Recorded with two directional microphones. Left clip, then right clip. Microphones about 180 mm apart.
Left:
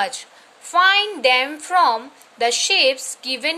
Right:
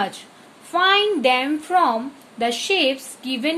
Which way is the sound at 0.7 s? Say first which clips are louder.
Left 2 dB; 15° left (ahead or behind).